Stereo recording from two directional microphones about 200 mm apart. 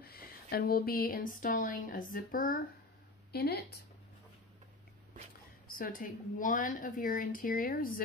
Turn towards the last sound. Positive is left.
turn(degrees=45)  # may be behind; listen again after turning